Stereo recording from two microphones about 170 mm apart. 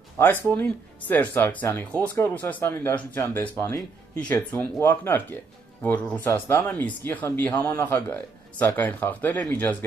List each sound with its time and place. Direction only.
0.2 s speech: 10° left (ahead or behind)